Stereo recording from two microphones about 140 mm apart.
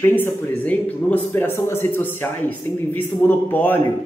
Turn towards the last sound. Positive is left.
turn(degrees=15)  # may be behind; listen again after turning